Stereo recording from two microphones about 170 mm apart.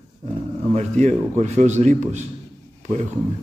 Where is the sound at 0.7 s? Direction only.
40° right (ahead or behind).